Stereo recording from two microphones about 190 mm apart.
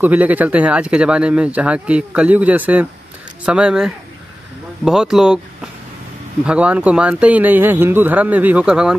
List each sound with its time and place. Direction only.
0.0 s speech: 10° right (ahead or behind)
6.4 s speech: 5° right (ahead or behind)